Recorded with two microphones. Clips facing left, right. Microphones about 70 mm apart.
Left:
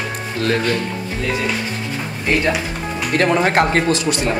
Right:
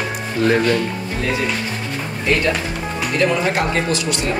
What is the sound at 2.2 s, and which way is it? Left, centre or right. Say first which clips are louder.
Speech: even; centre.